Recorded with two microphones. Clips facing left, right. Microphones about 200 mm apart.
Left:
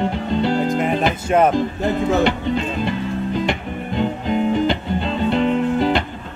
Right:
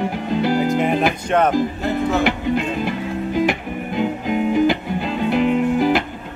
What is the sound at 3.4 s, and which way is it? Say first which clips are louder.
Music: right 1 dB; 5° right (ahead or behind).